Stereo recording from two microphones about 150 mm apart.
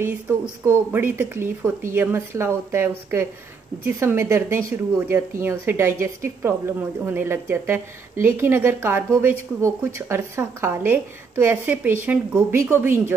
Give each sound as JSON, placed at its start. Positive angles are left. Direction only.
{"t": 0.7, "sound": "a woman's voice", "side_deg": -15}